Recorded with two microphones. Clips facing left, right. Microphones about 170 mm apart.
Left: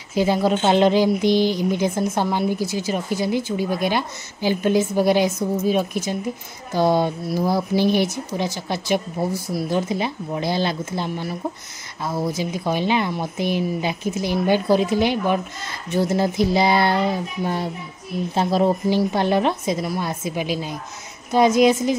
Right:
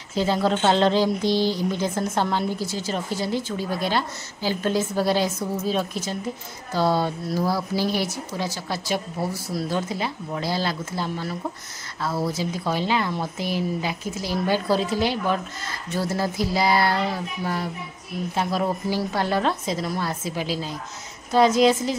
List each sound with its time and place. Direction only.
0.1 s speech: 10° left (ahead or behind)